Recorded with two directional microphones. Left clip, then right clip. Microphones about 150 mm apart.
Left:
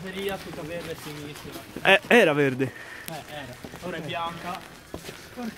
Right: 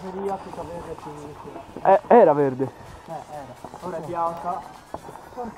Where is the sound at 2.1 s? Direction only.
10° left (ahead or behind).